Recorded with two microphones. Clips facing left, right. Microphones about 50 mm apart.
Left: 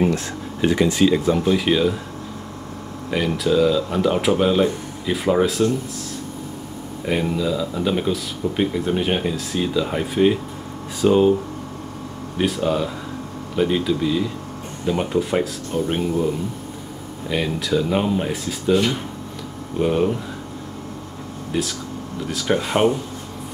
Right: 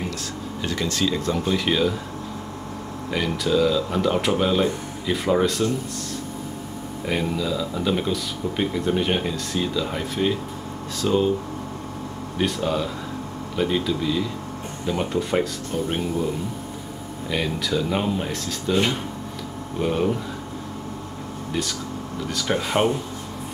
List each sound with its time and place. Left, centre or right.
0.0 s speech: left; by 2.0 s centre
3.1 s speech: centre
7.1 s speech: centre
12.4 s speech: centre
17.3 s speech: centre
19.8 s speech: centre
21.5 s speech: centre